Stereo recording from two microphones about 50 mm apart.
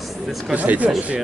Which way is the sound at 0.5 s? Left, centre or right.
Right.